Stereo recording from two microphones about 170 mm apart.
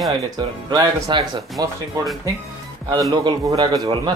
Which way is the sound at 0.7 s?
25° right (ahead or behind).